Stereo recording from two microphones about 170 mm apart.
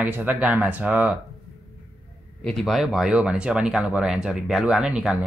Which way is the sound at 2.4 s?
Centre (ahead or behind).